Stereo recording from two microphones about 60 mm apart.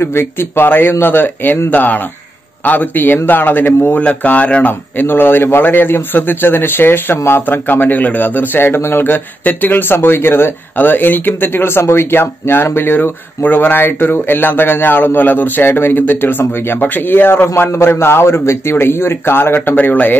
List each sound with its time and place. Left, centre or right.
0.0 s a man's voice: left
4.9 s a man's voice: left